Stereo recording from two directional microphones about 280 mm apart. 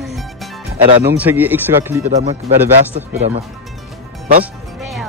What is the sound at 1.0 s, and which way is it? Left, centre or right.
Speech, centre.